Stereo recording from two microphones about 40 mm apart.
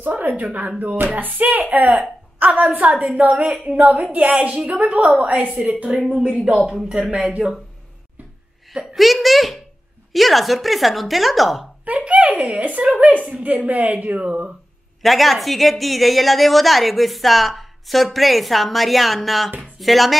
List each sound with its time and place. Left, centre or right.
0.4 s a woman's voice: right
6.1 s speech: right
8.9 s a woman's voice: centre
11.8 s a woman's voice: right
15.0 s a woman's voice: centre